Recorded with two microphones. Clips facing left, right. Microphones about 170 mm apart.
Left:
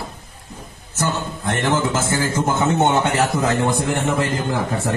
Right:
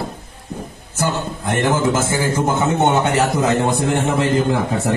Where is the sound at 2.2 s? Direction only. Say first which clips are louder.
Even; 15° right (ahead or behind).